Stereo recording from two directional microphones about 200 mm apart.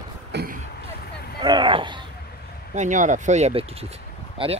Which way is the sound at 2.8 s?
40° right (ahead or behind).